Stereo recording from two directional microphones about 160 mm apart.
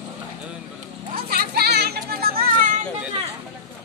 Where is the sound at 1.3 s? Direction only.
80° right.